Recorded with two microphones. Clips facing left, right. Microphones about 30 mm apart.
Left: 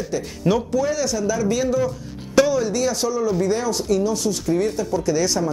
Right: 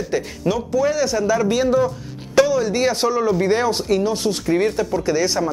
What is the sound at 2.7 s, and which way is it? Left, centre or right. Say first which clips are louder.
Speech: right 3 dB; right.